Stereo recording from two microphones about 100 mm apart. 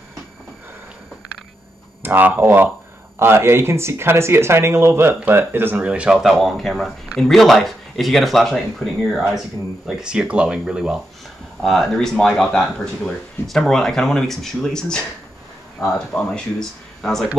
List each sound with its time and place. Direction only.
2.0 s speech: 20° right (ahead or behind); by 9.2 s 5° left (ahead or behind)
9.8 s speech: 5° right (ahead or behind)
11.6 s speech: centre (ahead or behind)
16.2 s speech: 5° left (ahead or behind)